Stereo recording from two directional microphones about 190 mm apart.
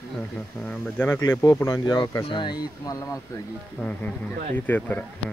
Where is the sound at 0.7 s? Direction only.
10° left (ahead or behind).